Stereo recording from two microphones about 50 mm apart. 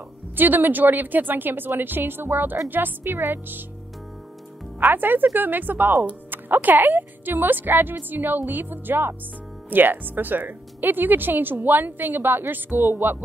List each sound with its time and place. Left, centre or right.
0.4 s speech: right
4.7 s speech: right